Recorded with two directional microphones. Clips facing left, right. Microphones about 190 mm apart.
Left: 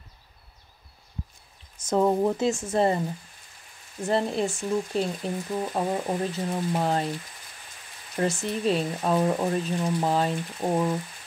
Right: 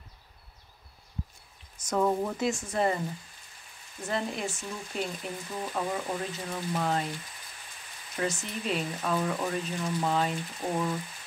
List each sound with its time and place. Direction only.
1.9 s speech: 25° left (ahead or behind)
4.1 s speech: 35° left (ahead or behind)
8.2 s speech: 35° left (ahead or behind)